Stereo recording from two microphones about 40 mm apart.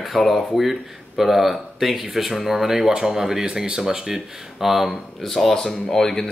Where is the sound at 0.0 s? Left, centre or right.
Centre.